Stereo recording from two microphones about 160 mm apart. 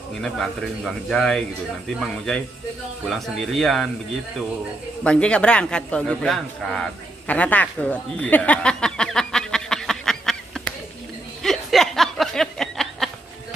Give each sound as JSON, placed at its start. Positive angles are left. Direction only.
{"t": 0.2, "sound": "a man's voice", "side_deg": 0}
{"t": 5.0, "sound": "a man's voice", "side_deg": 5}
{"t": 7.2, "sound": "chuckle", "side_deg": 10}
{"t": 11.4, "sound": "a sound", "side_deg": 0}